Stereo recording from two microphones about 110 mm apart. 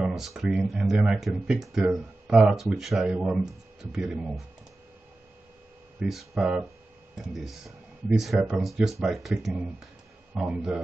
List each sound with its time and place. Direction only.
0.0 s speech: centre (ahead or behind)
5.9 s a man's voice: centre (ahead or behind)